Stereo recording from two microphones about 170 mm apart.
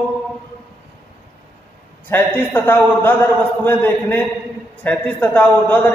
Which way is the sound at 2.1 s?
10° left (ahead or behind).